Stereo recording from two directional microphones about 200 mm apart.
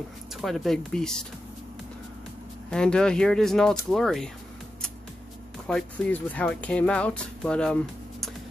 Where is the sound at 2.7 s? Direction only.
5° left (ahead or behind).